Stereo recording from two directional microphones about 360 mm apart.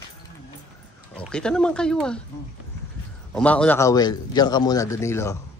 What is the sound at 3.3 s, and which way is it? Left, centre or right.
A man's voice, centre.